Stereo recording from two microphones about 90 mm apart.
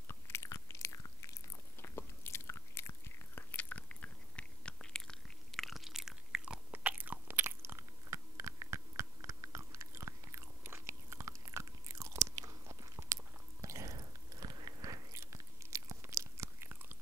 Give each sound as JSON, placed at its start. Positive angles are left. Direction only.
{"t": 0.1, "sound": "biting", "side_deg": 30}
{"t": 3.5, "sound": "chewing", "side_deg": 15}
{"t": 6.7, "sound": "biting", "side_deg": -15}
{"t": 13.9, "sound": "a sound", "side_deg": -45}
{"t": 15.1, "sound": "biting", "side_deg": -35}